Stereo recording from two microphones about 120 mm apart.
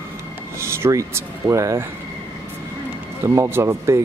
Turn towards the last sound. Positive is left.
turn(degrees=-20)  # may be behind; listen again after turning